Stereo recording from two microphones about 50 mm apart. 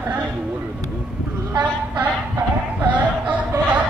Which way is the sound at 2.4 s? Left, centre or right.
Right.